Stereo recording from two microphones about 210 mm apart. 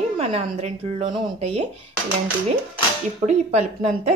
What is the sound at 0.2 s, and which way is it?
Speech, 30° right (ahead or behind).